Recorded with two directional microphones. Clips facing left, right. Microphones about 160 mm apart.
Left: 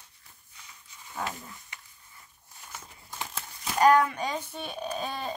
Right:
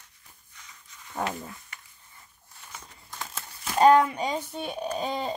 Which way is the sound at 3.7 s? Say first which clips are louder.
Right 3 dB; 25° right (ahead or behind).